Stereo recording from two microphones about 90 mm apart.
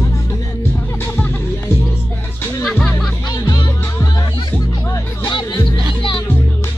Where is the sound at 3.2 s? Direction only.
50° left (ahead or behind).